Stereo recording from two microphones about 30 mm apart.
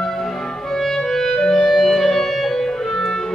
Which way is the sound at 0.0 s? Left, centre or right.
Centre.